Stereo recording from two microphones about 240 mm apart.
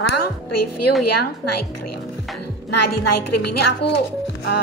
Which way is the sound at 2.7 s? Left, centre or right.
Left.